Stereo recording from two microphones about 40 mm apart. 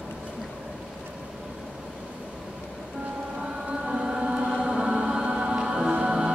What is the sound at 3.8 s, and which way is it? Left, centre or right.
Music, right.